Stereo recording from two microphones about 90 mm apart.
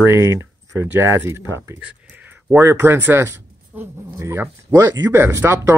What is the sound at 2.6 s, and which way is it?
Speech, 25° right (ahead or behind).